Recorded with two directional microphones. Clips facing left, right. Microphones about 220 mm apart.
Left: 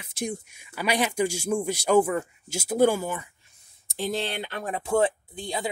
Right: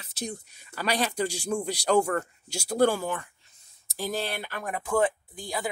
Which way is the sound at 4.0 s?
25° left (ahead or behind).